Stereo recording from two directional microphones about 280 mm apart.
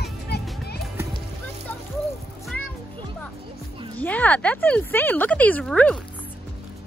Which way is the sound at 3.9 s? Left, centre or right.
Centre.